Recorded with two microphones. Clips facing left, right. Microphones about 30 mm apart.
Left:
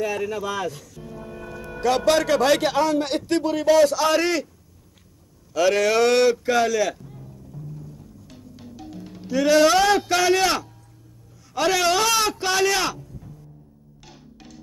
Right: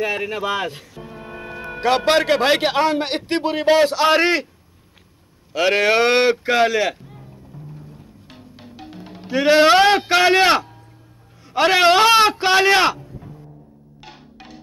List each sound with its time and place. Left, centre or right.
0.0 s speech: right
5.5 s a sound: right
11.5 s a man's voice: right
14.0 s music: right